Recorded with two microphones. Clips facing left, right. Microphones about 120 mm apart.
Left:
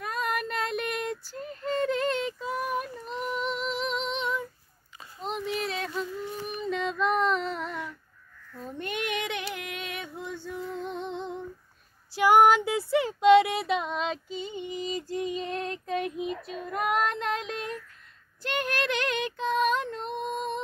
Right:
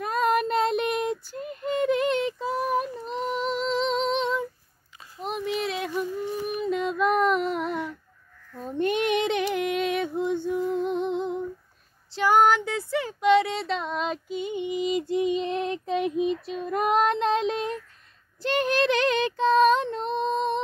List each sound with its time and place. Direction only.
0.0 s female singing: 30° right (ahead or behind)
5.2 s music: 15° right (ahead or behind)
8.6 s child singing: 25° right (ahead or behind)
9.5 s a sound: 35° right (ahead or behind)
10.3 s music: 20° right (ahead or behind)
12.2 s child singing: 15° left (ahead or behind)
13.7 s a sound: 5° left (ahead or behind)
14.7 s female singing: 15° right (ahead or behind)
18.4 s child singing: 30° right (ahead or behind)
20.1 s female singing: 90° right